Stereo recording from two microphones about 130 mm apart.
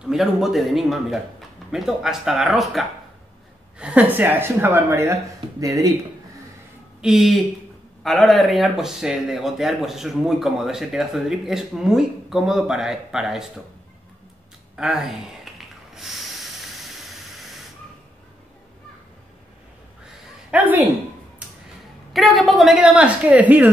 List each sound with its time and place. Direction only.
0.0 s speech: centre (ahead or behind); by 5.9 s 25° right (ahead or behind)
7.0 s speech: 5° right (ahead or behind)
14.8 s snort: centre (ahead or behind)
20.5 s speech: 15° right (ahead or behind)
22.1 s speech: centre (ahead or behind)